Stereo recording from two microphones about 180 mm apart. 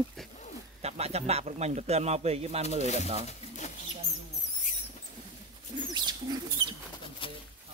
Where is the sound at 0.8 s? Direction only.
35° right (ahead or behind).